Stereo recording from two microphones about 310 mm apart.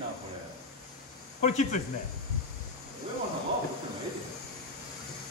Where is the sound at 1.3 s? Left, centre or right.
Left.